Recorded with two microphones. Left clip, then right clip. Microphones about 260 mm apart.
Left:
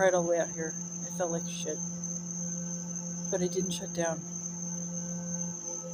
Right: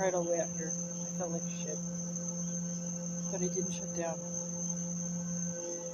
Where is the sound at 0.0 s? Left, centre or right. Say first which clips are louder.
Left 6 dB; left.